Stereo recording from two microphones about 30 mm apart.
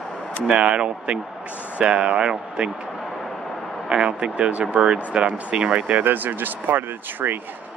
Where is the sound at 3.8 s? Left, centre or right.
Right.